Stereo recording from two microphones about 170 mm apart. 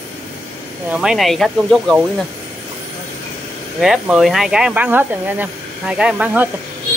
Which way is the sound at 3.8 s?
Centre (ahead or behind).